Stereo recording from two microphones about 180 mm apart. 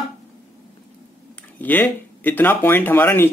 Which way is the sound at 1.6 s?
10° left (ahead or behind).